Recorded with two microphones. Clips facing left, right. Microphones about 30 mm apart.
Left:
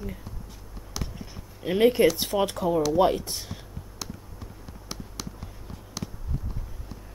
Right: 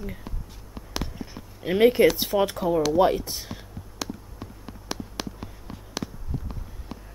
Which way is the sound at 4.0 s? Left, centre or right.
Right.